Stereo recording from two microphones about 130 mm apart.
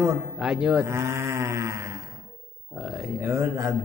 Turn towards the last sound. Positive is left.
turn(degrees=-20)  # may be behind; listen again after turning